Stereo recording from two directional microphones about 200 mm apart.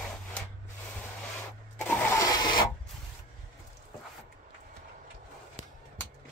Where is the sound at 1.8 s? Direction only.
10° left (ahead or behind).